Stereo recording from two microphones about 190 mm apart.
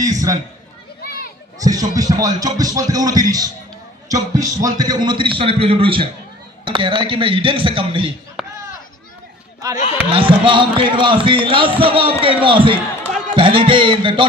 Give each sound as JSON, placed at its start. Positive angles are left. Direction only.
{"t": 0.0, "sound": "a man's voice", "side_deg": -20}
{"t": 1.6, "sound": "a man's voice", "side_deg": -20}
{"t": 8.4, "sound": "a sound", "side_deg": 0}
{"t": 10.1, "sound": "a man's voice", "side_deg": -25}